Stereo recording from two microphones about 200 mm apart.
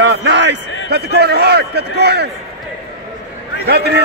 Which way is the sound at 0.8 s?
55° right (ahead or behind).